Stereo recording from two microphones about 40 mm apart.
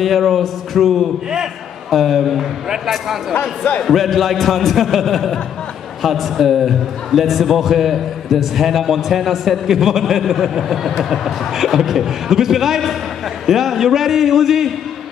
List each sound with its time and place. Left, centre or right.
0.0 s a man's voice: centre
3.3 s speech: left
3.8 s a man's voice: centre